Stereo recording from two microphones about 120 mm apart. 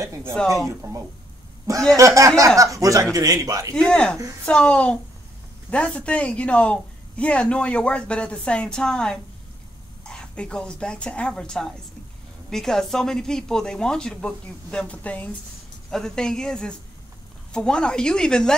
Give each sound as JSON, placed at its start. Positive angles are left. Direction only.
{"t": 0.0, "sound": "a man's voice", "side_deg": -25}
{"t": 2.0, "sound": "a man's voice", "side_deg": -25}
{"t": 3.7, "sound": "speech", "side_deg": 5}